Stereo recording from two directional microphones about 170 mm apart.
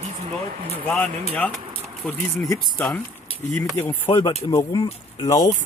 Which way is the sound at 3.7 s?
15° left (ahead or behind).